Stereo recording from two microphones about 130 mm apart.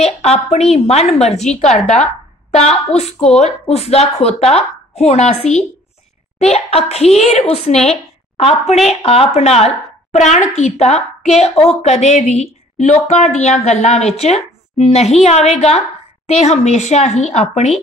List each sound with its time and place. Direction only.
0.0 s a woman's voice: 55° left (ahead or behind)
3.0 s a woman's voice: 55° left (ahead or behind)